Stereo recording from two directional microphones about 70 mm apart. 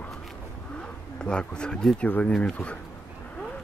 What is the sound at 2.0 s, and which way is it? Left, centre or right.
Speech, centre.